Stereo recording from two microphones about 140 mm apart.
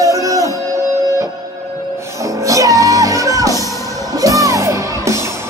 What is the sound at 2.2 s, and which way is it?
Music, 20° right (ahead or behind).